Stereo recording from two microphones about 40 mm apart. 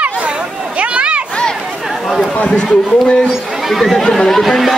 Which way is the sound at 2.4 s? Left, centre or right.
Left.